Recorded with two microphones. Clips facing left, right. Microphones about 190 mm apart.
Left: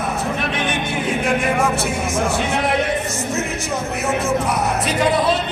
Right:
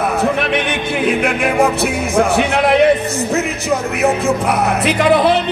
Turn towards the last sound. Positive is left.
turn(degrees=-65)  # may be behind; listen again after turning